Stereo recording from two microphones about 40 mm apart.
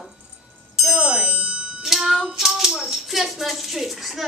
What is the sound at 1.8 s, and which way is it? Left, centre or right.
Child singing, centre.